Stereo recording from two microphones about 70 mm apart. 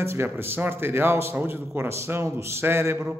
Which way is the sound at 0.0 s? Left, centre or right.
Right.